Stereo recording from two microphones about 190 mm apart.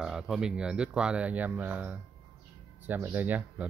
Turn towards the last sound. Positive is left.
turn(degrees=-10)  # may be behind; listen again after turning